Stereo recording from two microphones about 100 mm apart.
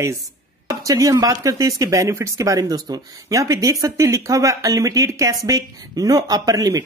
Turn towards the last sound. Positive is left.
turn(degrees=-35)  # may be behind; listen again after turning